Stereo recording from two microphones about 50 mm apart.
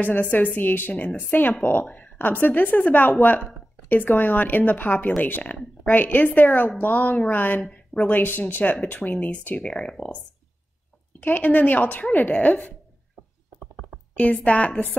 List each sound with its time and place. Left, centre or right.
0.0 s speech: left
9.6 s speech: left
11.1 s speech: left
14.1 s speech: left